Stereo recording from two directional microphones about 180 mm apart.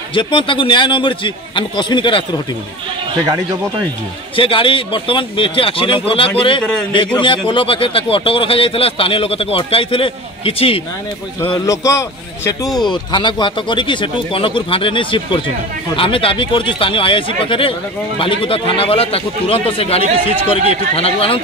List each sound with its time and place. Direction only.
0.1 s speech: 25° left (ahead or behind)
4.4 s speech: 30° left (ahead or behind)